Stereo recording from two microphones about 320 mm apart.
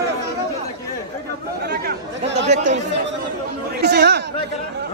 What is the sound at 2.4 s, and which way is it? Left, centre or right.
Speech, right.